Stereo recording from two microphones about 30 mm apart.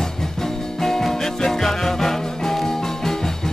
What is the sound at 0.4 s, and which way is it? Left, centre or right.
Music, centre.